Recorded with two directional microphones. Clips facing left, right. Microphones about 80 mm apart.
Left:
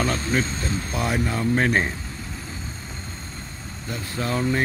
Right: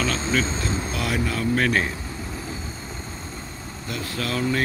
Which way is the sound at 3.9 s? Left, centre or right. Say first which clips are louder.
Left 1 dB; left.